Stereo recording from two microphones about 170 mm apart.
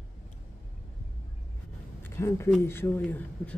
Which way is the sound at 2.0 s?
15° left (ahead or behind).